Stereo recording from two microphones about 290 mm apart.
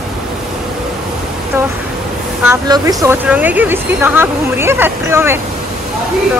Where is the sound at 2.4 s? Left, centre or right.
Centre.